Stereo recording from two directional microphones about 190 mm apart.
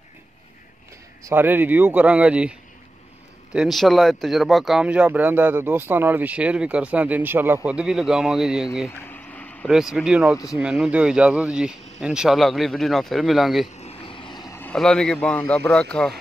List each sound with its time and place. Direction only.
1.2 s speech: 10° right (ahead or behind)
3.5 s speech: centre (ahead or behind)
8.8 s a sound: 10° left (ahead or behind)
9.7 s speech: 5° right (ahead or behind)
13.7 s vehicle: 30° left (ahead or behind)
14.6 s speech: 5° left (ahead or behind)